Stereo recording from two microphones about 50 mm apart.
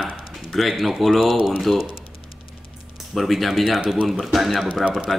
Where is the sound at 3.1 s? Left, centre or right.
Centre.